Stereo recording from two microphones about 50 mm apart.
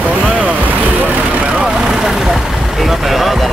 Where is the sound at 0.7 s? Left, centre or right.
Right.